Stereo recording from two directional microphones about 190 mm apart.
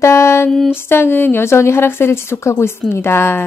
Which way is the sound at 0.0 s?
15° left (ahead or behind).